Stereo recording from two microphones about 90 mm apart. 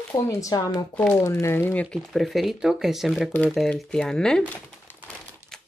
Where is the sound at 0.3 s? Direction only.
40° left (ahead or behind).